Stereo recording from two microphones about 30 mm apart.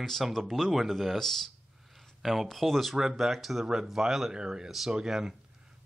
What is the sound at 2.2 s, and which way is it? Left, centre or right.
Speech, centre.